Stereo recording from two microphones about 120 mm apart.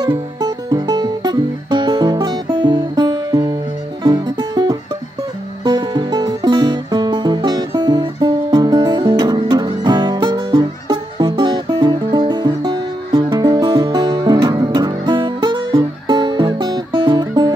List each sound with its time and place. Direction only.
0.0 s music: 35° right (ahead or behind)